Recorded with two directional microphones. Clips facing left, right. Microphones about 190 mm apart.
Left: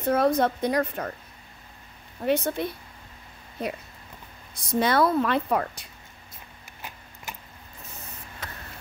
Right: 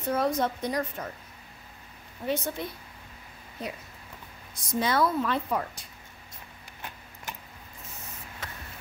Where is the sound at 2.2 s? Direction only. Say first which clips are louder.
Left 6 dB; 65° left (ahead or behind).